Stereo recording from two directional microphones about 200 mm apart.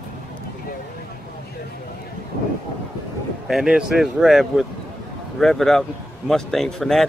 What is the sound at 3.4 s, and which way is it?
A man's voice, 5° right (ahead or behind).